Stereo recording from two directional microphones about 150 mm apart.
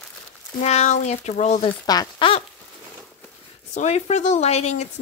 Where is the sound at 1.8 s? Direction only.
25° left (ahead or behind).